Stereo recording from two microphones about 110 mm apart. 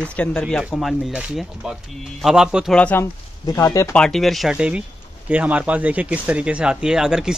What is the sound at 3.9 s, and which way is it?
Speech, 5° left (ahead or behind).